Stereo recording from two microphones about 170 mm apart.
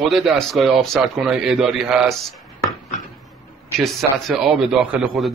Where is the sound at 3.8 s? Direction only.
Centre (ahead or behind).